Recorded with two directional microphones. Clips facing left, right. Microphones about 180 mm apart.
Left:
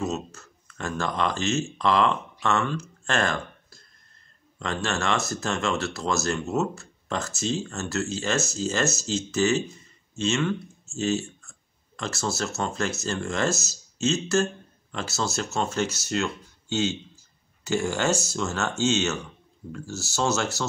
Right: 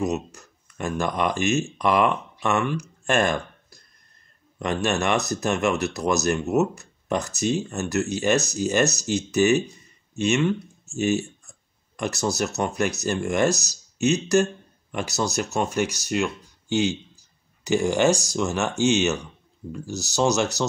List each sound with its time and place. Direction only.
0.0 s speech: 15° right (ahead or behind)